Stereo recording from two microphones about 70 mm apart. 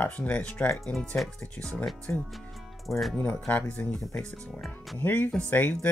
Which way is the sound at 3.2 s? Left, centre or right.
Centre.